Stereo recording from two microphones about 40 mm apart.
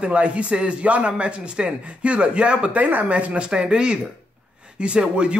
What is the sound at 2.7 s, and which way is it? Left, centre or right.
Speech, right.